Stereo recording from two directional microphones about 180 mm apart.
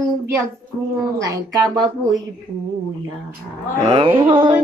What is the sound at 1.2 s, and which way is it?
Speech, 20° right (ahead or behind).